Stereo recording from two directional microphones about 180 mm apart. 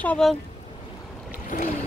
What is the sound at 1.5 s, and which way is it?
Boat, 50° left (ahead or behind).